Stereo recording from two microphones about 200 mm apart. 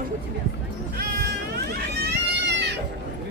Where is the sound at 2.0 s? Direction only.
55° right (ahead or behind).